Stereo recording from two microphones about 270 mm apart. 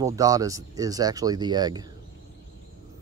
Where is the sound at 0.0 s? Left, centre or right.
Centre.